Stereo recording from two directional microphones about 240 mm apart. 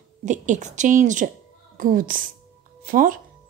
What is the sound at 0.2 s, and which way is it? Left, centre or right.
A woman's voice, right.